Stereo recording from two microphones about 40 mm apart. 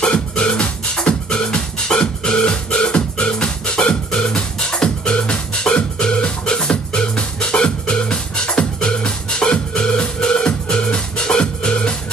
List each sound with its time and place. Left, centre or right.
0.0 s music: left